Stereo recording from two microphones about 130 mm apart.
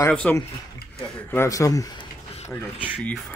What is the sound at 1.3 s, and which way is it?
Speech, 20° left (ahead or behind).